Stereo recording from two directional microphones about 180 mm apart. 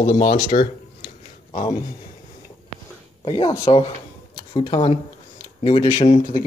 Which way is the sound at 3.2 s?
35° left (ahead or behind).